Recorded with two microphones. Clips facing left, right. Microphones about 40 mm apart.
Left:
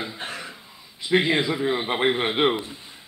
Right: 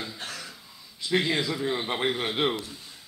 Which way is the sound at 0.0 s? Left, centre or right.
Left.